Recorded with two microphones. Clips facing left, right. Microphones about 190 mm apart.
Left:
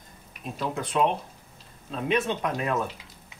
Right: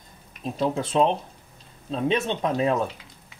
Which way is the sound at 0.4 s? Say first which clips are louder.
Right 6 dB; 30° right (ahead or behind).